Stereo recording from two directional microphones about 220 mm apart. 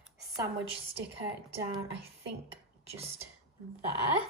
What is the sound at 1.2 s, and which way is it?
Speech, 25° right (ahead or behind).